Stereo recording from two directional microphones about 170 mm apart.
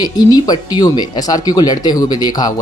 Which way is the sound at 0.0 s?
25° left (ahead or behind).